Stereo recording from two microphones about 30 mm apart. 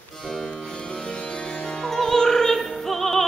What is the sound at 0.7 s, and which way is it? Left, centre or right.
Music, left.